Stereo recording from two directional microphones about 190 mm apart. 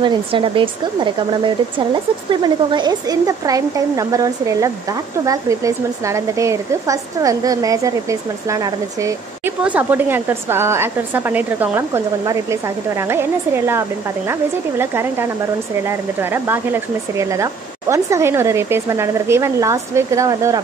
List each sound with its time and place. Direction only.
0.0 s speech: 25° right (ahead or behind)